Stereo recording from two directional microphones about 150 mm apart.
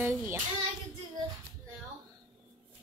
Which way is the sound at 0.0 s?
15° right (ahead or behind).